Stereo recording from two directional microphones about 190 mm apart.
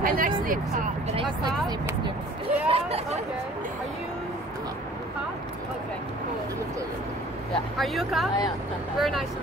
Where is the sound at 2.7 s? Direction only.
30° right (ahead or behind).